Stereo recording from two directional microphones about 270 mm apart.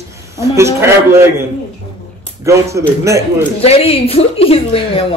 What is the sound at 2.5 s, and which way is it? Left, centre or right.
Speech, centre.